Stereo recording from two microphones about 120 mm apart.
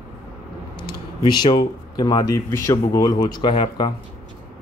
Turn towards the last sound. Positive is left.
turn(degrees=40)  # may be behind; listen again after turning